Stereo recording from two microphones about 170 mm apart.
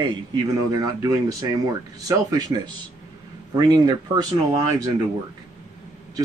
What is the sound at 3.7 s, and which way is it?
Speech, 25° right (ahead or behind).